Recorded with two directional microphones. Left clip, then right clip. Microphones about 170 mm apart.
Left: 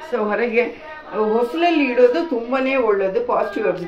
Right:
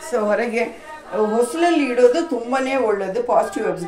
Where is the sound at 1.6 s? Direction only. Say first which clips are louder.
Even; 30° right (ahead or behind).